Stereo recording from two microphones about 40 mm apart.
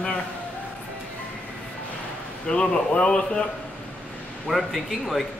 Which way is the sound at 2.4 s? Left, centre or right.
Left.